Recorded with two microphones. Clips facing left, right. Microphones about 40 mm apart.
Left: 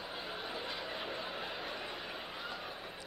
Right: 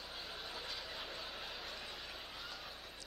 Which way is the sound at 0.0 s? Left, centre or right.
Centre.